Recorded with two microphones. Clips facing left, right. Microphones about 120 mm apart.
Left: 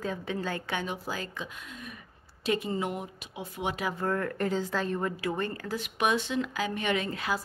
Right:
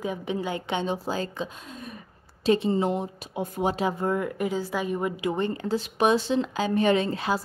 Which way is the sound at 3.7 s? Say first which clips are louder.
Right 6 dB; 30° right (ahead or behind).